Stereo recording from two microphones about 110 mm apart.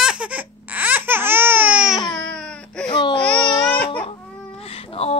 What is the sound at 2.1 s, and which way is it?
Baby cry, 10° left (ahead or behind).